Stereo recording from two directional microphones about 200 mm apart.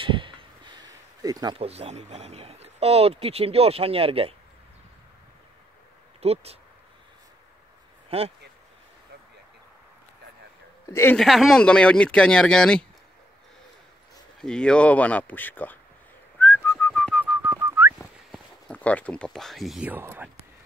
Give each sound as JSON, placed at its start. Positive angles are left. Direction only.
{"t": 0.0, "sound": "speech", "side_deg": -25}
{"t": 6.2, "sound": "speech", "side_deg": -30}
{"t": 8.1, "sound": "speech", "side_deg": -30}
{"t": 10.9, "sound": "speech", "side_deg": 10}
{"t": 14.4, "sound": "speech", "side_deg": 5}
{"t": 16.3, "sound": "whistling", "side_deg": 10}
{"t": 17.9, "sound": "a sound", "side_deg": 0}